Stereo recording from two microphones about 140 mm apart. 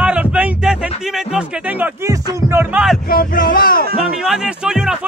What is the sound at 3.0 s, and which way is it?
Speech, 90° left.